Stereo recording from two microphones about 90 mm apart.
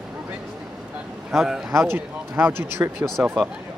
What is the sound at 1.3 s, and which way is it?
Speech, 5° right (ahead or behind).